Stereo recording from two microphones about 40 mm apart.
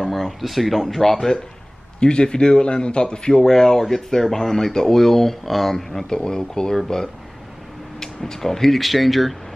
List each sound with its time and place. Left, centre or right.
0.0 s speech: centre
2.0 s a man's voice: left
6.0 s a man's voice: centre